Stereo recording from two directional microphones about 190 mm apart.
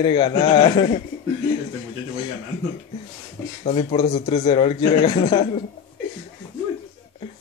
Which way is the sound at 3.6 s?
30° left (ahead or behind).